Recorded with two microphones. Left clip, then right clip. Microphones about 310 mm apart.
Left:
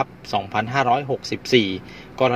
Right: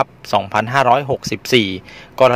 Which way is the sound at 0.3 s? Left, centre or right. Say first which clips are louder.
Right 7 dB; right.